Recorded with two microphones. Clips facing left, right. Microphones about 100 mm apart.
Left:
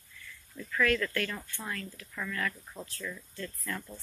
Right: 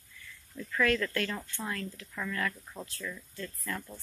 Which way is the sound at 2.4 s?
5° right (ahead or behind).